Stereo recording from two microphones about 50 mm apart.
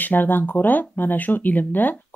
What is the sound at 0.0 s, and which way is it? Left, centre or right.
Speech, left.